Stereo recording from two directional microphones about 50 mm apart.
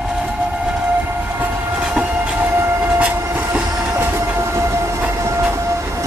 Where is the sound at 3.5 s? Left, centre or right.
Centre.